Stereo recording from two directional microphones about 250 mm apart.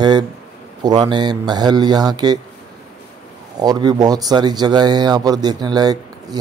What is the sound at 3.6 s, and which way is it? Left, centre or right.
Speech, centre.